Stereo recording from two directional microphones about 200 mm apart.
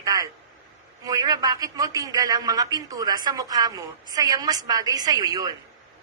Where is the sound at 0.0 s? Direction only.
20° right (ahead or behind).